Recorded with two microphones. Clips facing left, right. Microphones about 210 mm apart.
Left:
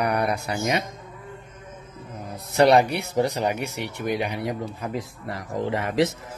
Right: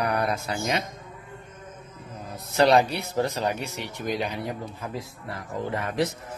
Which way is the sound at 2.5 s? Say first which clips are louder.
Left 2 dB; 65° left (ahead or behind).